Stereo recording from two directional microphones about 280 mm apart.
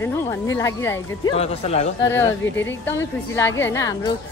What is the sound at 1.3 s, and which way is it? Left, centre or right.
Speech, left.